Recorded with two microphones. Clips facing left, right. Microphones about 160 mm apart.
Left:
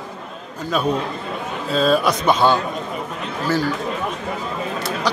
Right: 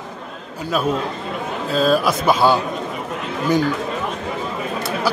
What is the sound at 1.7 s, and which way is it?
Speech, centre (ahead or behind).